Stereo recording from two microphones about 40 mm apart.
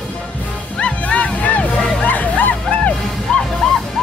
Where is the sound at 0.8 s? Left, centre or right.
Left.